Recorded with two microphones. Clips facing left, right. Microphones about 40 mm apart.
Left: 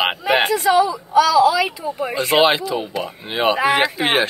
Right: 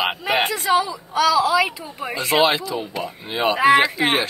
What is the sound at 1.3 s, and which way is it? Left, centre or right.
Speech, right.